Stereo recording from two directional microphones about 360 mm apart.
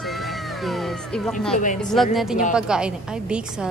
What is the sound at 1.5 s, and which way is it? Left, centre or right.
Speech, left.